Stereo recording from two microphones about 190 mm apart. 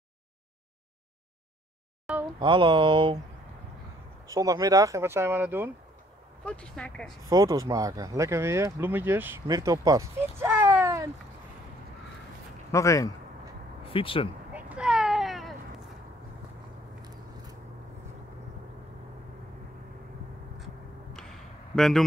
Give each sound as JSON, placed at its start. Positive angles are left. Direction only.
{"t": 2.1, "sound": "a sound", "side_deg": -5}
{"t": 2.4, "sound": "speech", "side_deg": -25}
{"t": 4.3, "sound": "speech", "side_deg": -20}
{"t": 6.4, "sound": "speech", "side_deg": 5}
{"t": 7.2, "sound": "speech", "side_deg": -20}
{"t": 12.7, "sound": "speech", "side_deg": 15}
{"t": 13.9, "sound": "speech", "side_deg": 30}
{"t": 14.5, "sound": "a sound", "side_deg": -5}
{"t": 17.0, "sound": "a sound", "side_deg": -20}
{"t": 21.7, "sound": "speech", "side_deg": 0}